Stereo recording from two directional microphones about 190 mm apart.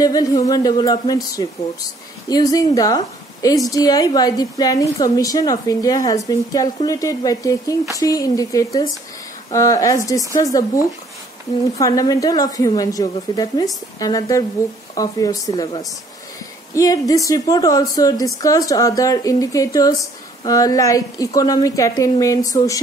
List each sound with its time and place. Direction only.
0.0 s a woman's voice: 20° left (ahead or behind)